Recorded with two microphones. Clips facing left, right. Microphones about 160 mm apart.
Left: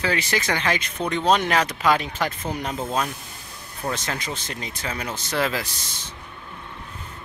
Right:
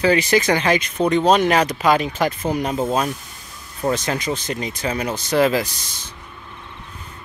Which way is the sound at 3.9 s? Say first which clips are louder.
Right 7 dB; 15° right (ahead or behind).